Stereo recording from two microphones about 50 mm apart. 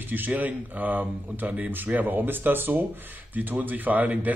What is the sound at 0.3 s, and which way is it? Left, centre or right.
Speech, right.